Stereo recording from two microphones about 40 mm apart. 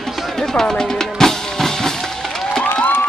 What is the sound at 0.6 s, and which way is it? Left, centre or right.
Drum, centre.